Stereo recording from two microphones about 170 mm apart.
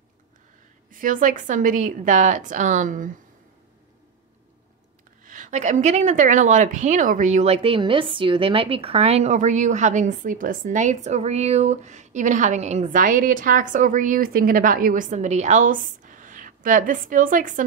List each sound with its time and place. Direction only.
1.0 s a woman's voice: 50° right (ahead or behind)
5.2 s a woman's voice: 50° right (ahead or behind)